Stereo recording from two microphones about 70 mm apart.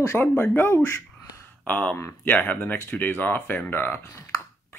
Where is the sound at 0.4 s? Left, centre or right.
Left.